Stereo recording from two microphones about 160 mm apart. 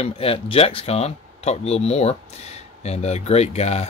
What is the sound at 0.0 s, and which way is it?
Speech, 35° left (ahead or behind).